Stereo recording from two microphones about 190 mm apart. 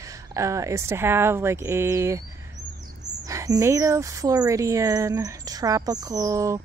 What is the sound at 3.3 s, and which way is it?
Speech, 15° right (ahead or behind).